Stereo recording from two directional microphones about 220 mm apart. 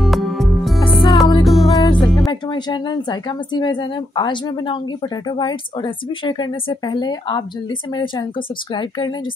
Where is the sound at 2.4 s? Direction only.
20° left (ahead or behind).